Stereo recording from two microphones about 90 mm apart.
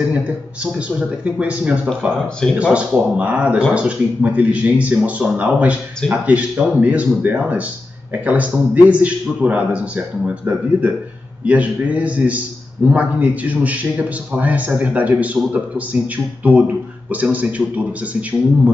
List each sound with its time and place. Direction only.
0.0 s a man's voice: 10° right (ahead or behind)